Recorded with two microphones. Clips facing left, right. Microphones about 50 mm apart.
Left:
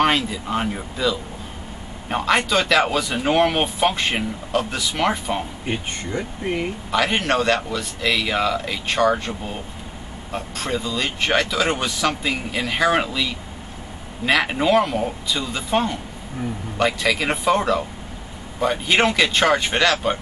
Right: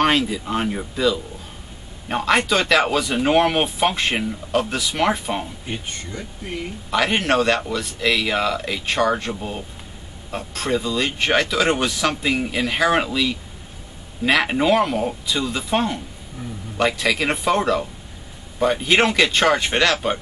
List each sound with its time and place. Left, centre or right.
0.0 s speech: centre
5.7 s speech: left
6.9 s speech: centre